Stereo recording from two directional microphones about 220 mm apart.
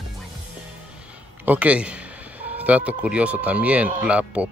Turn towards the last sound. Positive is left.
turn(degrees=-5)  # may be behind; listen again after turning